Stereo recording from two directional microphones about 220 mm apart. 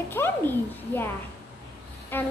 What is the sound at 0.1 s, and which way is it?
A child's voice, 10° left (ahead or behind).